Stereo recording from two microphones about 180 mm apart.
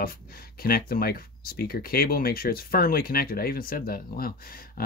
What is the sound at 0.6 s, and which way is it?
Speech, 55° left (ahead or behind).